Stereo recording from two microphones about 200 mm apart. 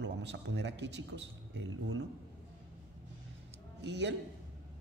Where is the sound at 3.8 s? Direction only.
60° right (ahead or behind).